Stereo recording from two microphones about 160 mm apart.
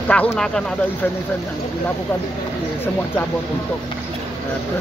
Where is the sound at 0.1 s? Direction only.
5° left (ahead or behind).